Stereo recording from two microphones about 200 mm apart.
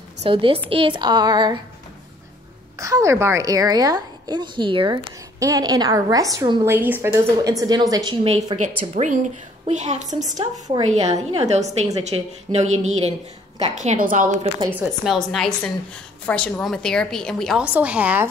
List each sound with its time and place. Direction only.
0.2 s a woman's voice: 25° right (ahead or behind)
2.8 s a woman's voice: 15° right (ahead or behind)
8.9 s a woman's voice: 40° right (ahead or behind)
10.0 s a woman's voice: 20° right (ahead or behind)
10.3 s a woman's voice: 35° right (ahead or behind)
14.7 s a woman's voice: 10° right (ahead or behind)
15.1 s a woman's voice: centre (ahead or behind)